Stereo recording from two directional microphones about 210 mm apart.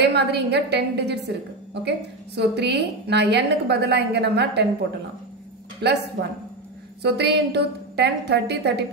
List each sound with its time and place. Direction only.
0.0 s a woman's voice: 55° right (ahead or behind)
5.8 s a woman's voice: 50° right (ahead or behind)